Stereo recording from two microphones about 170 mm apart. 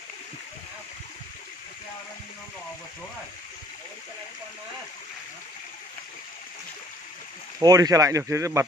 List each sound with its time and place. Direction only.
7.6 s speech: 20° right (ahead or behind)